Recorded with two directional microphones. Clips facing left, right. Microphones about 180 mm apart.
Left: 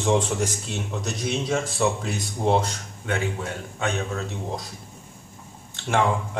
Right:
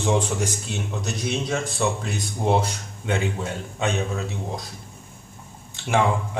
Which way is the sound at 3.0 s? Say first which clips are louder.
Right 2 dB; 25° right (ahead or behind).